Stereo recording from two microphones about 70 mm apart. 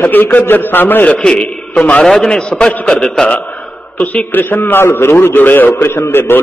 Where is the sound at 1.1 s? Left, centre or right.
Centre.